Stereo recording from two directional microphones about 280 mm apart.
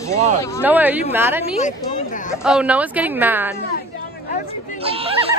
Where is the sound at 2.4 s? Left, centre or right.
Centre.